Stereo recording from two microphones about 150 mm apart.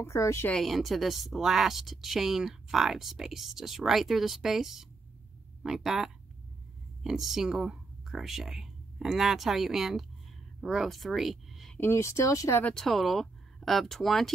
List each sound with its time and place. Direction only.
0.0 s speech: 20° left (ahead or behind)
0.5 s a woman's voice: centre (ahead or behind)
11.8 s speech: 20° left (ahead or behind)
12.6 s a woman's voice: centre (ahead or behind)